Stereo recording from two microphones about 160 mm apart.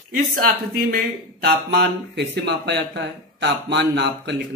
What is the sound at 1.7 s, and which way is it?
Speech, 85° right.